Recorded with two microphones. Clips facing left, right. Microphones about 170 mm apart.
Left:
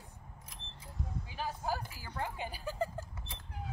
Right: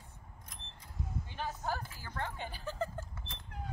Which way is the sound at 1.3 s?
5° left (ahead or behind).